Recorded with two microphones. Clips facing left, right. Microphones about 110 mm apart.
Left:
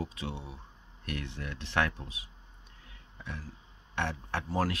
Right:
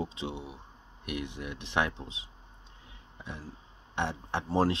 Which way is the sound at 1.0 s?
15° right (ahead or behind).